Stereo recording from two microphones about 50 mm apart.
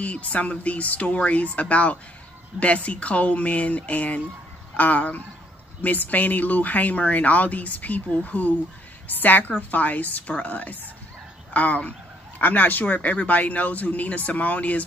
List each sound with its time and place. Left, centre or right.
0.0 s speech: left